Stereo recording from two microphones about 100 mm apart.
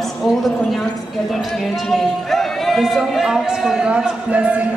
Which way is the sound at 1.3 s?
Centre (ahead or behind).